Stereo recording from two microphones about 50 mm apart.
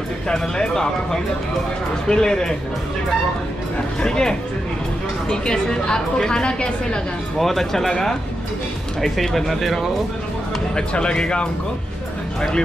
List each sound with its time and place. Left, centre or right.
0.3 s a woman's voice: centre
4.0 s a woman's voice: centre
7.3 s a woman's voice: centre
10.8 s a woman's voice: centre